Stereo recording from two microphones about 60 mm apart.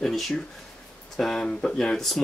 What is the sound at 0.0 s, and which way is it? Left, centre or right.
Speech, centre.